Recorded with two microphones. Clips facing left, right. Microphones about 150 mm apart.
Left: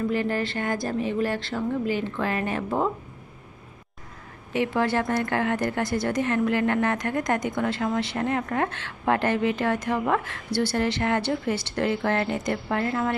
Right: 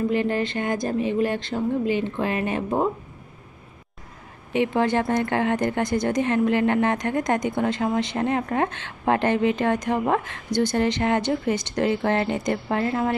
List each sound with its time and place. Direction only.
0.1 s a woman's voice: 20° right (ahead or behind)
4.6 s a woman's voice: 20° right (ahead or behind)